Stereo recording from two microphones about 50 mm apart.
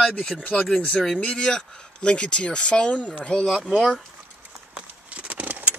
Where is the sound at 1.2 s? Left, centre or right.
Centre.